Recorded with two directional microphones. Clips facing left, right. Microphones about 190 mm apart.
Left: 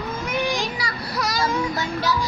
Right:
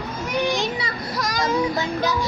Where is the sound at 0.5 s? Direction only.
20° right (ahead or behind).